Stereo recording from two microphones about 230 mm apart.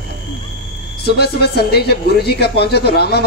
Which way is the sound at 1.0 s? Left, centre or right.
Left.